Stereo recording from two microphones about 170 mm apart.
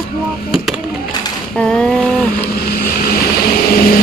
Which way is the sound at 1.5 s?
5° left (ahead or behind).